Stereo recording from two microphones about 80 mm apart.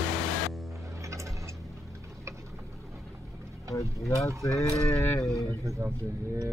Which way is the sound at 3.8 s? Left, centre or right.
Left.